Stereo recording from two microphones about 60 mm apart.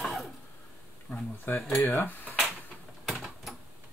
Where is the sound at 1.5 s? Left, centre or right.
Left.